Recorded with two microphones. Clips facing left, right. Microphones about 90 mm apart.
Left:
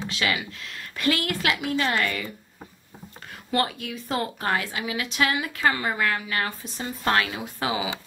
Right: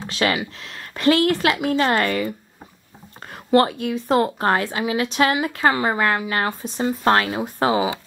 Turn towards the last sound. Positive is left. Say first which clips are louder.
# right 8 dB
turn(degrees=-40)  # may be behind; listen again after turning